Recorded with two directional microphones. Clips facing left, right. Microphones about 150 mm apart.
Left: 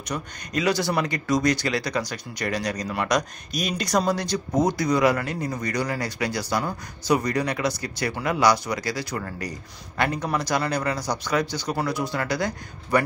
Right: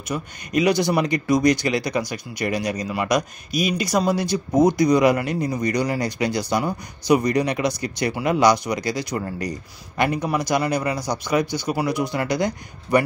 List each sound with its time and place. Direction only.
0.1 s speech: 15° right (ahead or behind)